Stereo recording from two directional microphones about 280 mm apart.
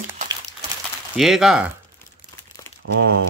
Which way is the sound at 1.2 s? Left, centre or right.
Centre.